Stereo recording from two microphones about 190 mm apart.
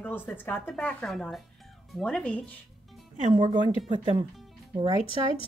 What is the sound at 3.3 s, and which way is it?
Speech, 25° right (ahead or behind).